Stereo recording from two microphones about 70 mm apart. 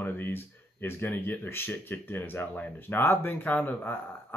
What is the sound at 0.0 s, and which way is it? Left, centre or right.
Speech, left.